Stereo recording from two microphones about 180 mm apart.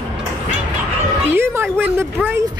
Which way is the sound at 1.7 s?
10° right (ahead or behind).